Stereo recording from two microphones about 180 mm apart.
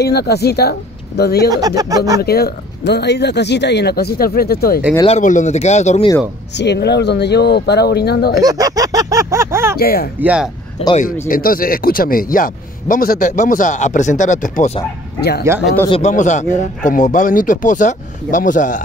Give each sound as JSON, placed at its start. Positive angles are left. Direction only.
{"t": 0.0, "sound": "speech", "side_deg": 65}
{"t": 1.8, "sound": "speech", "side_deg": -20}
{"t": 2.2, "sound": "speech", "side_deg": 60}
{"t": 5.0, "sound": "speech", "side_deg": 40}
{"t": 6.5, "sound": "speech", "side_deg": 70}
{"t": 8.4, "sound": "speech", "side_deg": -20}
{"t": 9.8, "sound": "speech", "side_deg": 60}
{"t": 10.2, "sound": "a man's voice", "side_deg": -5}
{"t": 11.2, "sound": "a man's voice", "side_deg": 50}
{"t": 15.1, "sound": "speech", "side_deg": 65}
{"t": 15.9, "sound": "a man's voice", "side_deg": 40}